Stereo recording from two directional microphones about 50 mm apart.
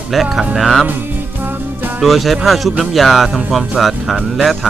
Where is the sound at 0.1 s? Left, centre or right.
Centre.